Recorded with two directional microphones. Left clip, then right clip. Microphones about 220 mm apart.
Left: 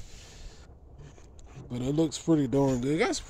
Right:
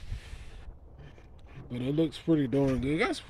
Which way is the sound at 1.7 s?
5° left (ahead or behind).